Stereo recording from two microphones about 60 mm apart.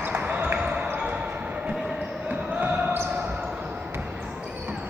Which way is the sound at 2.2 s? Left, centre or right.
Right.